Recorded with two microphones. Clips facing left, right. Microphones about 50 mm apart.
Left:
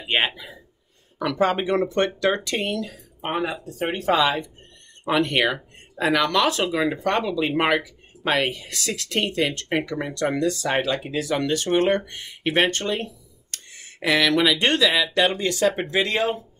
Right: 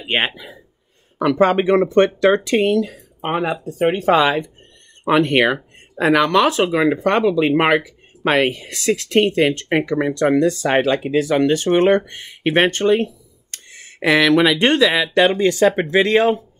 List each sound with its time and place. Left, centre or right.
0.0 s speech: right
1.4 s speech: right
15.6 s speech: right